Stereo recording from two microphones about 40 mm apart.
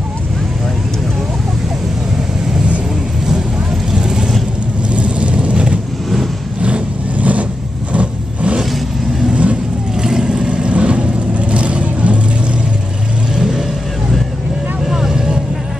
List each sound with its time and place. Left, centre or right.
3.9 s vehicle: centre
4.9 s vehicle: right
10.0 s vehicle: centre
10.5 s vehicle: right
13.4 s vehicle: centre
14.9 s vehicle: centre